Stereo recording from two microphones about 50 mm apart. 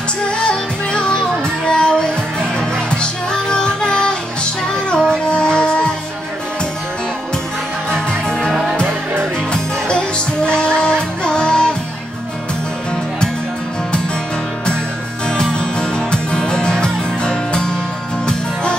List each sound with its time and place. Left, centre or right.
0.3 s music: centre
3.0 s music: centre
7.9 s music: centre
15.2 s music: centre